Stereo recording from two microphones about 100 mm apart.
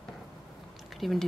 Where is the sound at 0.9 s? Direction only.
Centre (ahead or behind).